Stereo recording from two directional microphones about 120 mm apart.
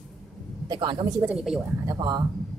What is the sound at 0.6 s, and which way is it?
Speech, 35° right (ahead or behind).